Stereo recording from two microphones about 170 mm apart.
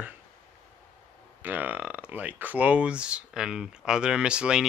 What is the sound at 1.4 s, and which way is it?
Speech, 10° right (ahead or behind).